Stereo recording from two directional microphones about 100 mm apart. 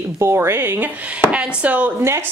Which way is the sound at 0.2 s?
25° right (ahead or behind).